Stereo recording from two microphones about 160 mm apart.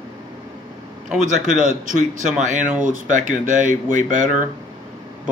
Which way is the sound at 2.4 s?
50° right (ahead or behind).